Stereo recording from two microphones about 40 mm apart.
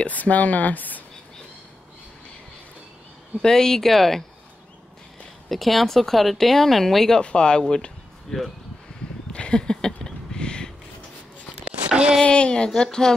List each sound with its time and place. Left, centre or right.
0.0 s speech: left
3.4 s speech: centre
5.5 s speech: centre
7.2 s speech: left
9.3 s a sound: left
11.6 s a sound: right
12.2 s speech: left